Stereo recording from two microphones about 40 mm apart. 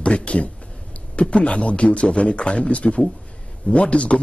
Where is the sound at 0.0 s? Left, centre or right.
Left.